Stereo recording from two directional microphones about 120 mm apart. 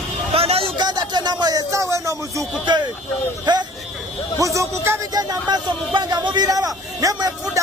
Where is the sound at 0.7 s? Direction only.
35° right (ahead or behind).